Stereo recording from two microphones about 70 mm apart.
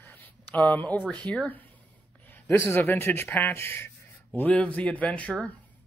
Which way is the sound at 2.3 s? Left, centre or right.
Left.